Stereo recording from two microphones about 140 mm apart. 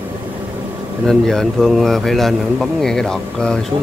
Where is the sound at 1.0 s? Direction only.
5° left (ahead or behind).